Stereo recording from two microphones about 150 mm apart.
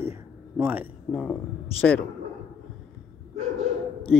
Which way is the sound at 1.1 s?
5° left (ahead or behind).